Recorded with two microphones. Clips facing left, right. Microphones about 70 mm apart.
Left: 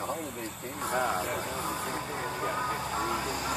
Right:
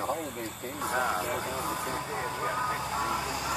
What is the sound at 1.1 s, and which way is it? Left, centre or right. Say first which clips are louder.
Speech: right 1 dB; centre.